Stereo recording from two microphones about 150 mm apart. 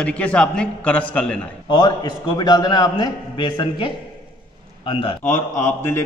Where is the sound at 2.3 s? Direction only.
25° left (ahead or behind).